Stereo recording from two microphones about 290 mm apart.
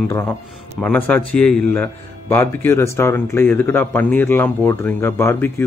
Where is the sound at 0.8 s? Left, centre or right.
Centre.